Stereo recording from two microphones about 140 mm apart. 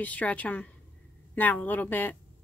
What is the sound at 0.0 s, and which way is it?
A woman's voice, 10° left (ahead or behind).